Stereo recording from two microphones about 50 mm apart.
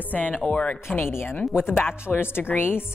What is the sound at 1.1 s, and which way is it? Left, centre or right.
Speech, left.